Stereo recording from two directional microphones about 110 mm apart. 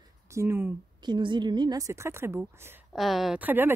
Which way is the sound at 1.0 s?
45° right (ahead or behind).